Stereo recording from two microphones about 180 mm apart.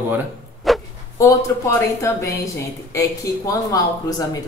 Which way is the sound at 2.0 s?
15° left (ahead or behind).